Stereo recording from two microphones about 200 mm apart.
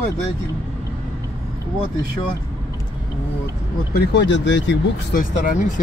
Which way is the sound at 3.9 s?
55° left (ahead or behind).